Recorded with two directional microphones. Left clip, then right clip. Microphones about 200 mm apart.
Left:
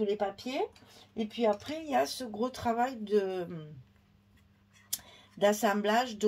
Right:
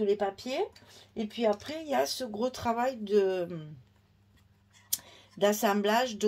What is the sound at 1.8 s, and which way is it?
Speech, 35° right (ahead or behind).